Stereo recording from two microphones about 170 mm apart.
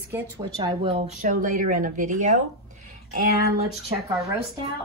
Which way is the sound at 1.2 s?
50° right (ahead or behind).